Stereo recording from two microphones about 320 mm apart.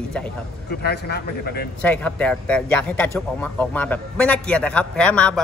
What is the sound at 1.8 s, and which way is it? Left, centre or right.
Speech, centre.